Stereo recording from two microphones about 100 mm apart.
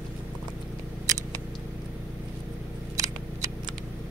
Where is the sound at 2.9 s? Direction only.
35° right (ahead or behind).